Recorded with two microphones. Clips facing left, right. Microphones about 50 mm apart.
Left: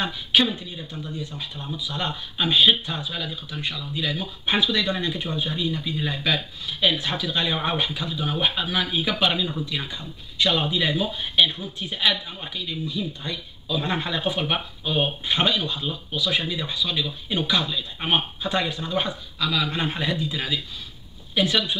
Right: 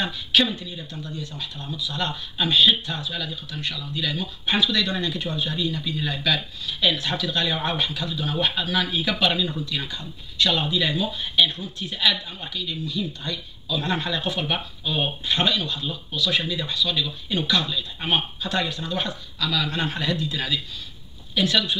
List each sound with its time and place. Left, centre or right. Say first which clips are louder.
0.0 s speech: even; centre